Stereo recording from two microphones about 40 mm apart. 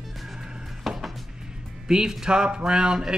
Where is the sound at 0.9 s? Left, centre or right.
Centre.